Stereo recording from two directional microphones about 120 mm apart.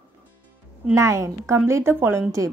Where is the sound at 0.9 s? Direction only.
25° right (ahead or behind).